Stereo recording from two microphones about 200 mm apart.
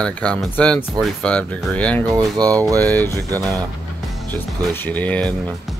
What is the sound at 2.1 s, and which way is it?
Speech, 20° right (ahead or behind).